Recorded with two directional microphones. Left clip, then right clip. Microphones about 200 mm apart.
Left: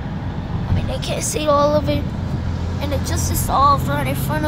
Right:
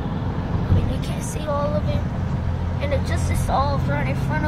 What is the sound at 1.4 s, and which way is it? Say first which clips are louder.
Music: left 9 dB; 35° left (ahead or behind).